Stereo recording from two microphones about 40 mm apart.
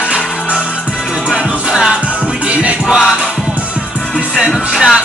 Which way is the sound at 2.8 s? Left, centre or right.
Centre.